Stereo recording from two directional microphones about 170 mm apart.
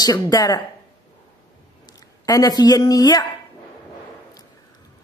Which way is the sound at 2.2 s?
20° left (ahead or behind).